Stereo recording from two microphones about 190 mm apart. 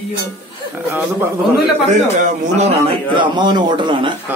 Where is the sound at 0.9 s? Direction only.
10° right (ahead or behind).